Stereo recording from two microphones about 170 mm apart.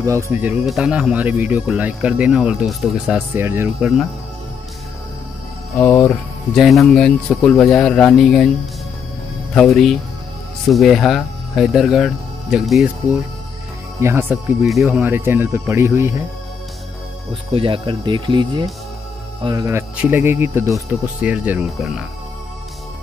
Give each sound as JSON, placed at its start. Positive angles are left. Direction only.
{"t": 0.0, "sound": "speech", "side_deg": -15}
{"t": 3.8, "sound": "speech", "side_deg": 0}
{"t": 5.8, "sound": "speech", "side_deg": 15}
{"t": 6.5, "sound": "speech", "side_deg": 0}
{"t": 9.5, "sound": "speech", "side_deg": 5}
{"t": 13.9, "sound": "speech", "side_deg": -15}
{"t": 17.3, "sound": "speech", "side_deg": -30}